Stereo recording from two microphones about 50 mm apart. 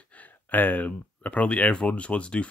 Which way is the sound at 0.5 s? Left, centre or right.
Left.